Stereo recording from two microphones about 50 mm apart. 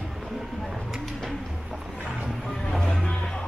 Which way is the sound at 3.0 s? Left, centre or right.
Centre.